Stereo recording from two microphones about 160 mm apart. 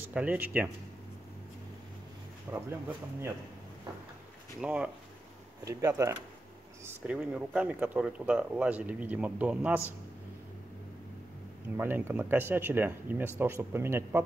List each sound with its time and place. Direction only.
0.1 s speech: 10° right (ahead or behind)
2.5 s speech: 15° right (ahead or behind)
4.6 s speech: 5° right (ahead or behind)
5.7 s speech: 20° right (ahead or behind)
11.7 s speech: 15° right (ahead or behind)